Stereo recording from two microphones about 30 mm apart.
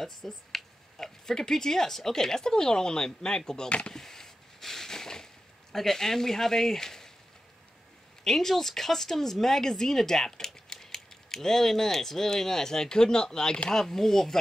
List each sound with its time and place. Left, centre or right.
0.0 s speech: centre
3.6 s speech: left
3.9 s a sound: centre
8.2 s speech: centre
13.7 s speech: centre